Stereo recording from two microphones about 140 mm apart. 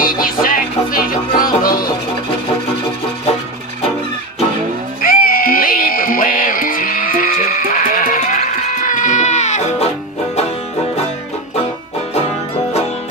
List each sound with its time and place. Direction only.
0.0 s music: 90° left
5.0 s music: 90° left; by 10.4 s 50° left (ahead or behind)